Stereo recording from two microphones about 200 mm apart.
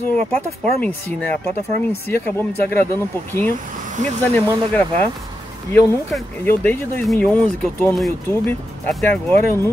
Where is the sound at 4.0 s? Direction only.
35° right (ahead or behind).